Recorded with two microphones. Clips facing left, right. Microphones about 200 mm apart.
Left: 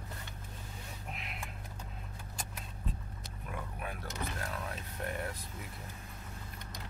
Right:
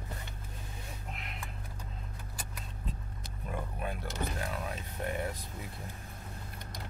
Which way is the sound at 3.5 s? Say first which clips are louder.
Right 4 dB; 25° right (ahead or behind).